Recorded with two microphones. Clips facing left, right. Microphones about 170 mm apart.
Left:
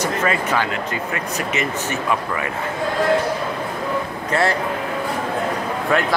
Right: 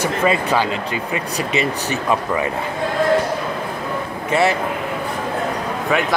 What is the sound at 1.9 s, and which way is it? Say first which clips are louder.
Speech: right 4 dB; 20° right (ahead or behind).